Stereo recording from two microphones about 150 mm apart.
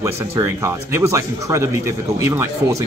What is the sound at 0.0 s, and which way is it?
Speech, 20° right (ahead or behind).